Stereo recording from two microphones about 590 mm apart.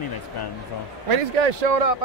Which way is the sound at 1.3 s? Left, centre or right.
Right.